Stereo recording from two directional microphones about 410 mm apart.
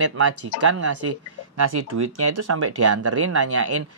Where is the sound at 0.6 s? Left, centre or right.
Right.